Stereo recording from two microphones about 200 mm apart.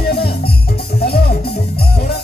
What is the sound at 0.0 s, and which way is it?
Music, 50° left (ahead or behind).